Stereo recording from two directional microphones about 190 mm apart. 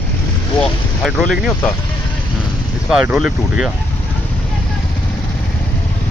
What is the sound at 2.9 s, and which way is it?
Speech, 5° right (ahead or behind).